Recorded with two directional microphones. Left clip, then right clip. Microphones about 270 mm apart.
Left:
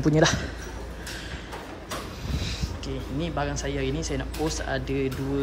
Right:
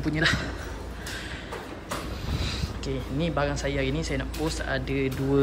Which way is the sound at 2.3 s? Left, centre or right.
Centre.